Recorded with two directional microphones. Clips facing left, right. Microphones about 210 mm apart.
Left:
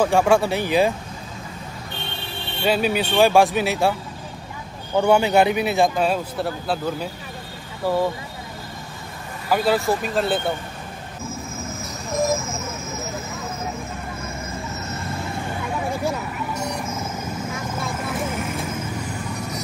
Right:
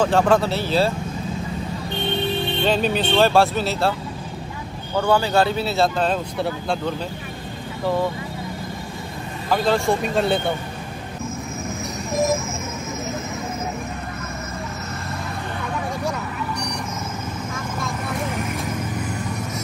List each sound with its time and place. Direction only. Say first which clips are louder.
0.0 s speech: even; 10° left (ahead or behind)
2.6 s speech: left 1 dB; 10° left (ahead or behind)
4.9 s speech: left 2 dB; 20° left (ahead or behind); by 7.1 s 5° left (ahead or behind)
9.5 s speech: even; 10° left (ahead or behind)